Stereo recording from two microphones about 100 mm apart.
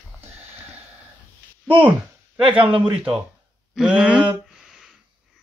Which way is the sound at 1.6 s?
20° right (ahead or behind).